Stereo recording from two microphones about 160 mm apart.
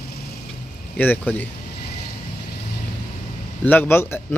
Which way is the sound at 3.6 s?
15° left (ahead or behind).